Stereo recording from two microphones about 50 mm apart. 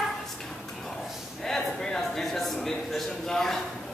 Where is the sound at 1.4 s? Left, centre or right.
Centre.